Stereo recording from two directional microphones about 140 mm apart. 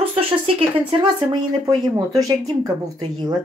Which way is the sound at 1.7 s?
25° right (ahead or behind).